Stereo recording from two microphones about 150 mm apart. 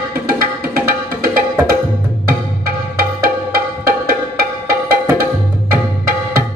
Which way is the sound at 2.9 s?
80° right.